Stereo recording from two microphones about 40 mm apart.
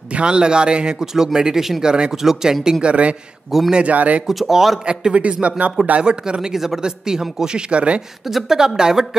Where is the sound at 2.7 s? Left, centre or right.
Right.